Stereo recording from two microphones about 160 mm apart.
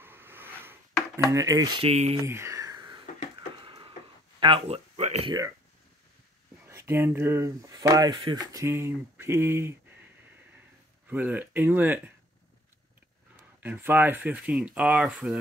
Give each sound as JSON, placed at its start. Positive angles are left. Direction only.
{"t": 0.0, "sound": "a sound", "side_deg": -15}
{"t": 1.3, "sound": "speech", "side_deg": -20}
{"t": 1.8, "sound": "speech", "side_deg": -40}
{"t": 2.2, "sound": "a sound", "side_deg": -15}
{"t": 4.4, "sound": "speech", "side_deg": -35}
{"t": 6.6, "sound": "speech", "side_deg": -15}
{"t": 11.1, "sound": "speech", "side_deg": -10}
{"t": 13.6, "sound": "speech", "side_deg": -10}